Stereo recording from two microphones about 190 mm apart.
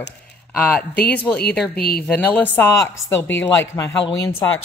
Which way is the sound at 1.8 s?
55° left (ahead or behind).